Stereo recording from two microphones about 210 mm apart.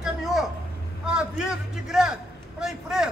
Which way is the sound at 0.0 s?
Centre (ahead or behind).